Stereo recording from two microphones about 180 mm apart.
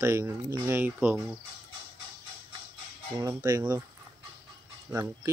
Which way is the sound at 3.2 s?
20° right (ahead or behind).